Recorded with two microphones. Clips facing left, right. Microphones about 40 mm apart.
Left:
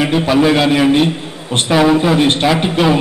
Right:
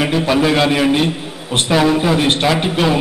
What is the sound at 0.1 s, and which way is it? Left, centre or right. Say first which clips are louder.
A man's voice: left 2 dB; centre.